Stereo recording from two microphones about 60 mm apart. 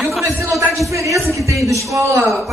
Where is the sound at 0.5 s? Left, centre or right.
Right.